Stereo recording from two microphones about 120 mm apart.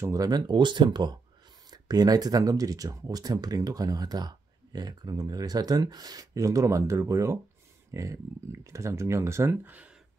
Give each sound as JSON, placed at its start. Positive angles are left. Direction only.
{"t": 0.0, "sound": "speech", "side_deg": -30}